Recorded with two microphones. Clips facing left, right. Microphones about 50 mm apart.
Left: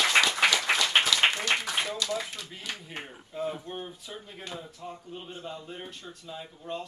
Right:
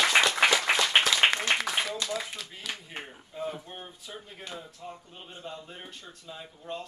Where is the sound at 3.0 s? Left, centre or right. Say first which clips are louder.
Left 2 dB; centre.